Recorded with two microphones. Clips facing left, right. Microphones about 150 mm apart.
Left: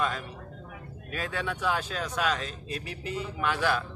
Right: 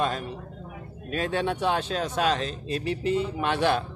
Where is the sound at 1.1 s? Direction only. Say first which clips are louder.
Right 6 dB; 25° right (ahead or behind).